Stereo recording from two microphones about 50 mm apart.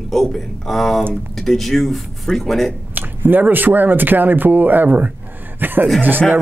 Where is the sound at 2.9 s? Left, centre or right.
Right.